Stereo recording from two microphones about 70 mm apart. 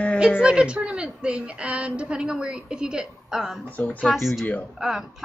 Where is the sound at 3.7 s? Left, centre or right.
Left.